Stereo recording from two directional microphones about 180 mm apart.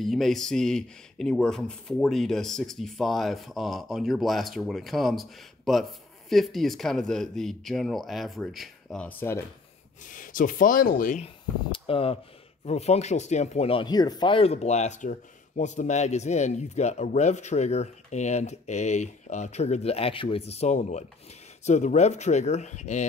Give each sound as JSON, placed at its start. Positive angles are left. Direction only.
{"t": 0.0, "sound": "speech", "side_deg": 0}
{"t": 10.0, "sound": "speech", "side_deg": 50}
{"t": 11.2, "sound": "speech", "side_deg": 30}